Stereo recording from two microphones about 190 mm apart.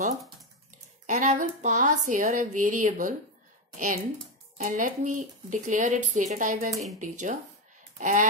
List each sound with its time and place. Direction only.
1.0 s a woman's voice: 40° right (ahead or behind)